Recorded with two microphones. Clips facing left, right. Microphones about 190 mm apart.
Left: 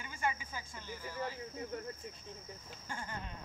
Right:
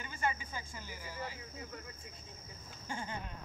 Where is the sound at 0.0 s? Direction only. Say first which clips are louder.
Right 1 dB; 10° left (ahead or behind).